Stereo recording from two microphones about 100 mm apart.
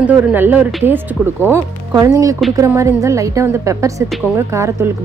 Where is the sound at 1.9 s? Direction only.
35° right (ahead or behind).